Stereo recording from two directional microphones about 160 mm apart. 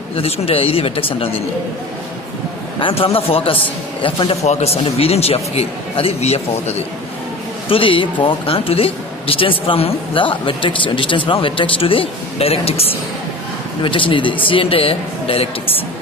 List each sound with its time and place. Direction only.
0.1 s speech: 35° left (ahead or behind)
2.8 s speech: 35° left (ahead or behind)